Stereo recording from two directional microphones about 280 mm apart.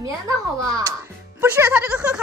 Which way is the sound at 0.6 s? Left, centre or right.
Centre.